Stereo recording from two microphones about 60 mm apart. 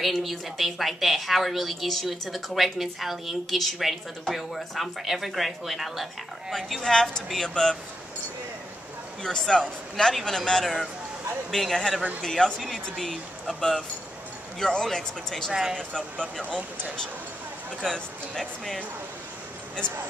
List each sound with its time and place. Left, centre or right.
0.0 s a woman's voice: centre
9.2 s a woman's voice: centre
13.6 s speech: centre
16.4 s speech: centre
17.8 s a woman's voice: centre